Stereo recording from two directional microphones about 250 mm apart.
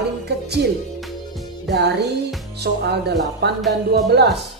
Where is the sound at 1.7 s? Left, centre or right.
Right.